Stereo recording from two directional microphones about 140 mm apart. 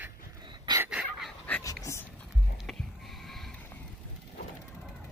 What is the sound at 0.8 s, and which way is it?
Dog, 5° right (ahead or behind).